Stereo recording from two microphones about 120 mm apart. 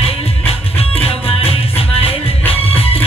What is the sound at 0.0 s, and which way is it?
Music, 55° left (ahead or behind).